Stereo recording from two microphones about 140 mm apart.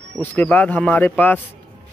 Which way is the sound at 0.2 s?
10° left (ahead or behind).